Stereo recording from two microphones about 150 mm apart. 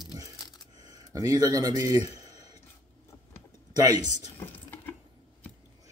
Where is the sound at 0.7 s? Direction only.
25° right (ahead or behind).